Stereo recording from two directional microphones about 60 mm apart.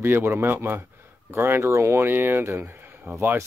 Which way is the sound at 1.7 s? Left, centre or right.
Right.